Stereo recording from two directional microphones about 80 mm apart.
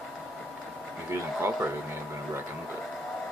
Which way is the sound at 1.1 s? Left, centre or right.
Right.